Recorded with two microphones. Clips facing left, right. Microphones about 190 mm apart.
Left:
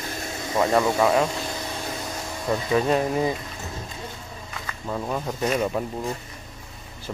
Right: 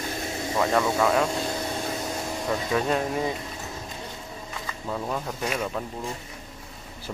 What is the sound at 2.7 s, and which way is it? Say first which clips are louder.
Speech: left 5 dB; 5° left (ahead or behind).